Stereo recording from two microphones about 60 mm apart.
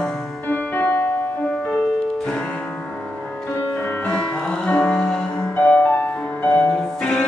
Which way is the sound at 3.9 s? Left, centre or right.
Left.